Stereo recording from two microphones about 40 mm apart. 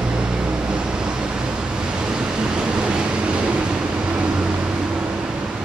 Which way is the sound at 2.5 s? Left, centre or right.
Right.